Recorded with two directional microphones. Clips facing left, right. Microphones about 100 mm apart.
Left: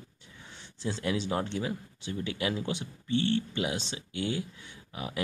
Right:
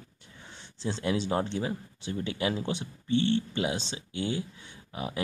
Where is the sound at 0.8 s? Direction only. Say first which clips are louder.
Right 2 dB; 30° right (ahead or behind).